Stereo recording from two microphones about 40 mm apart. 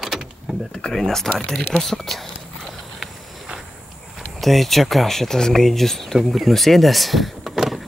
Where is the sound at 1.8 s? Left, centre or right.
Centre.